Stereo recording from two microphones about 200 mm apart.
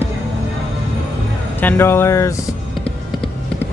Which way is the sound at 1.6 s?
10° left (ahead or behind).